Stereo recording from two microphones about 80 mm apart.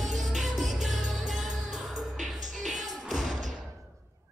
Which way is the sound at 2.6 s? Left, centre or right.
Centre.